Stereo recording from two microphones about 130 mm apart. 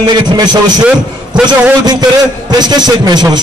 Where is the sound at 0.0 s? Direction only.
35° right (ahead or behind).